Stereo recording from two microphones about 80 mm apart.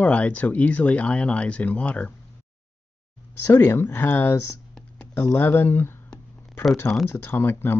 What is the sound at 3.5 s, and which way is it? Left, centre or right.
Speech, left.